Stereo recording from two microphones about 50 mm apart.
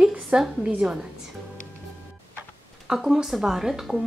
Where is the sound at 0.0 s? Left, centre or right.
Centre.